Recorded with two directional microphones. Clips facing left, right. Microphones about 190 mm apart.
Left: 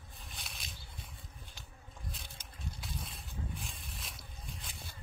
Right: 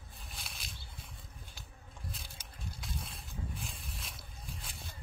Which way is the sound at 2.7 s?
Centre (ahead or behind).